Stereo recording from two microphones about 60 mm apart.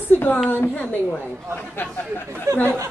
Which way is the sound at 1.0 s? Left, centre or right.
Left.